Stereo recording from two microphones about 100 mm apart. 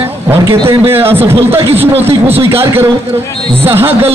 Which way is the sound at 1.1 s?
70° right (ahead or behind).